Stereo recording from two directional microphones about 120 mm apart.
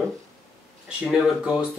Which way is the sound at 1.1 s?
5° right (ahead or behind).